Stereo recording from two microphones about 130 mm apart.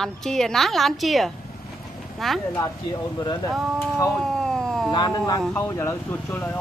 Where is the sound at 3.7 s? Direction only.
20° left (ahead or behind).